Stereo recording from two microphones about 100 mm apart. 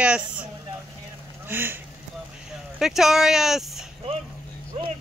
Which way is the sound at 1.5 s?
20° right (ahead or behind).